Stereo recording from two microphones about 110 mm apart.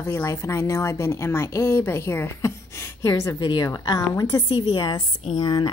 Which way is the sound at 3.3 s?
45° left (ahead or behind).